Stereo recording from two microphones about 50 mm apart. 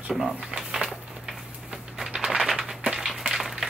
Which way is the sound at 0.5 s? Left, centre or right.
Centre.